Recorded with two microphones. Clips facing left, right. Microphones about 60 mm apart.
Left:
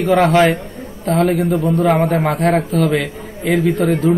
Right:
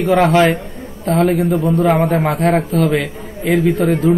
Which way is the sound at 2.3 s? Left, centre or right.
Centre.